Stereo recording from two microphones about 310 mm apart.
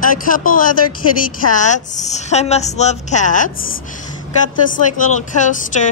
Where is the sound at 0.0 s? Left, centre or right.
Left.